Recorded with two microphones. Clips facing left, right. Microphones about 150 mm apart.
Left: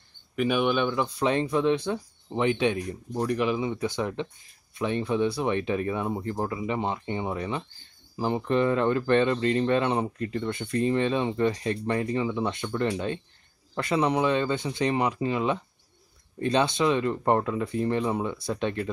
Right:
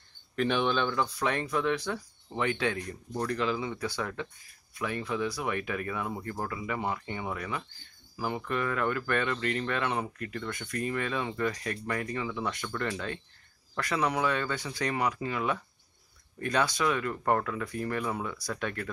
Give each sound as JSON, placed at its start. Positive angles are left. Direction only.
{"t": 0.4, "sound": "speech", "side_deg": 10}